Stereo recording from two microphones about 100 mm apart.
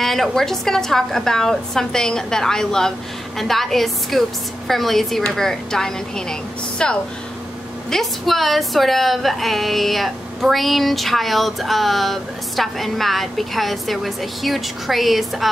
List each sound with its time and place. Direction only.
0.0 s a woman's voice: 5° left (ahead or behind)